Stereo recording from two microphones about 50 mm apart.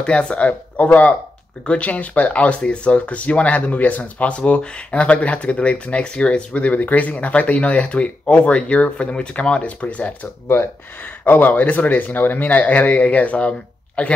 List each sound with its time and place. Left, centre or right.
0.0 s speech: left
11.0 s speech: left